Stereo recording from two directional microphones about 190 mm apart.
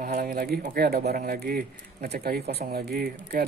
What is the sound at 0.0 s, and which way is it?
Speech, 50° right (ahead or behind).